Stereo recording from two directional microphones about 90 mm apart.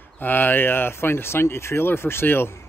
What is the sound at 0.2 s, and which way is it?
Speech, 20° left (ahead or behind).